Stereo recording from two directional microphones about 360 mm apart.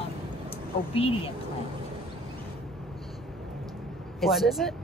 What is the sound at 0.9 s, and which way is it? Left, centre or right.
Speech, centre.